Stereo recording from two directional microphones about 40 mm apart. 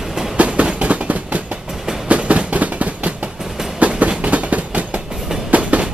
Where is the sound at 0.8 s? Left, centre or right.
Right.